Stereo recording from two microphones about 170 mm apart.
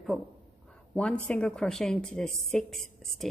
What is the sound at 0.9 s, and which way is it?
A woman's voice, 5° left (ahead or behind).